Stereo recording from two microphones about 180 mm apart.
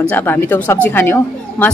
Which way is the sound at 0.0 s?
10° left (ahead or behind).